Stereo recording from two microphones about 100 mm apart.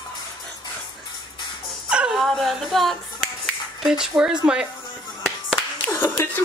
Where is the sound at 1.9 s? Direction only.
5° right (ahead or behind).